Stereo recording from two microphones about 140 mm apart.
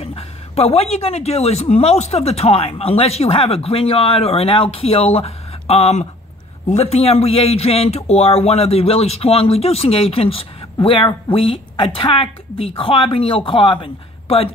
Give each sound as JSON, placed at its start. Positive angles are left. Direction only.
{"t": 0.0, "sound": "speech", "side_deg": 45}